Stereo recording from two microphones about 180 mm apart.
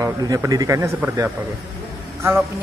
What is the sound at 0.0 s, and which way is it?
Speech, 20° right (ahead or behind).